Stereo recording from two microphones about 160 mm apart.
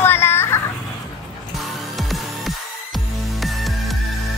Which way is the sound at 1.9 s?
Centre (ahead or behind).